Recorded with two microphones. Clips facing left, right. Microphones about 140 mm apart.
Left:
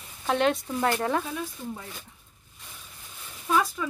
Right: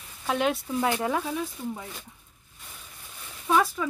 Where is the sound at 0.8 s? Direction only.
15° right (ahead or behind).